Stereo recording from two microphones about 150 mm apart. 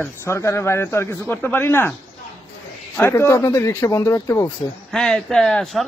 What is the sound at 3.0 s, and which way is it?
Speech, 15° left (ahead or behind).